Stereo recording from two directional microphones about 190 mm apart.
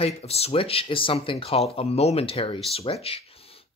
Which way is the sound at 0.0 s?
30° left (ahead or behind).